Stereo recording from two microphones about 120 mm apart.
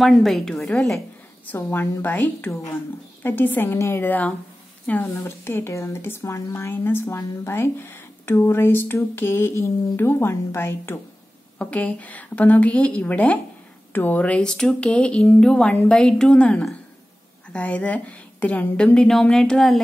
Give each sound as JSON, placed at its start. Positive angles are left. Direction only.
{"t": 0.0, "sound": "a woman's voice", "side_deg": 0}
{"t": 1.4, "sound": "a woman's voice", "side_deg": 15}